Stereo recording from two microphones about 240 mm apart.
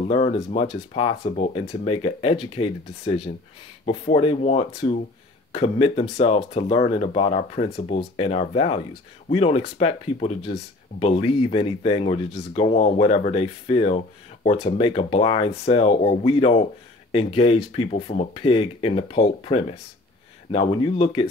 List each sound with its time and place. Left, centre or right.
0.1 s speech: left